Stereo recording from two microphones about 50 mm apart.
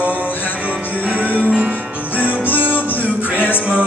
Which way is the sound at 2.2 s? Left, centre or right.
Left.